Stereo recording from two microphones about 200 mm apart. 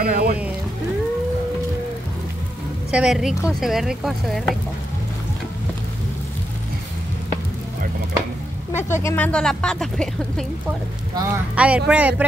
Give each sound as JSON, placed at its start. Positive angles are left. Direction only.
{"t": 0.0, "sound": "speech", "side_deg": -50}
{"t": 2.9, "sound": "speech", "side_deg": -5}
{"t": 8.7, "sound": "speech", "side_deg": 15}
{"t": 11.1, "sound": "speech", "side_deg": -10}